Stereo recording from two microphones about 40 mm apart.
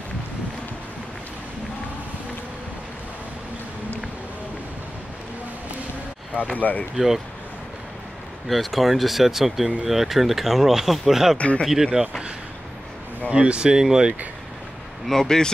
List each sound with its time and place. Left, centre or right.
6.5 s speech: left
8.5 s speech: centre
11.3 s speech: left
11.6 s speech: centre
13.3 s speech: right
15.0 s speech: centre